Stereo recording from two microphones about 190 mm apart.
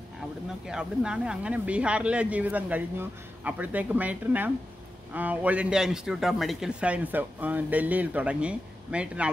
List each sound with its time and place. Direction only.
0.7 s a man's voice: 5° right (ahead or behind)